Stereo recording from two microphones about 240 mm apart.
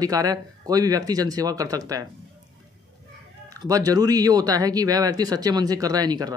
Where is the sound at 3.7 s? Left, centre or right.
Centre.